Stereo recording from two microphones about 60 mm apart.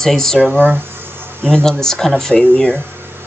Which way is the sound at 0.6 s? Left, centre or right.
Right.